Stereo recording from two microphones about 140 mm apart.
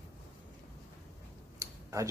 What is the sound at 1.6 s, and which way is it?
Tick-tock, 20° right (ahead or behind).